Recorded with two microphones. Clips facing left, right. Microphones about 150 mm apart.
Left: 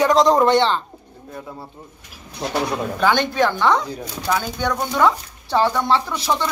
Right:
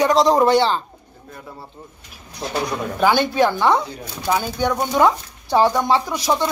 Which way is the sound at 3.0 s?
10° right (ahead or behind).